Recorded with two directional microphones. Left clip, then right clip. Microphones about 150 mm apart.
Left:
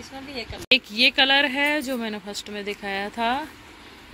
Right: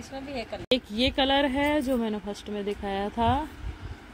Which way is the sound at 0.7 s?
10° right (ahead or behind).